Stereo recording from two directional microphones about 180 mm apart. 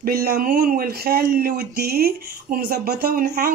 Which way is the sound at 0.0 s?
55° right (ahead or behind).